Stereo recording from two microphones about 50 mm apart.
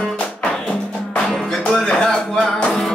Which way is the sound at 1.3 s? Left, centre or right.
Centre.